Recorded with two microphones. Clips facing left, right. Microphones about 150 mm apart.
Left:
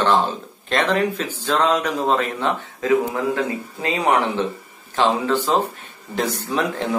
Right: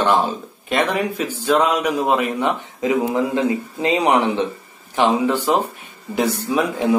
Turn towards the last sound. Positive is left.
turn(degrees=-10)  # may be behind; listen again after turning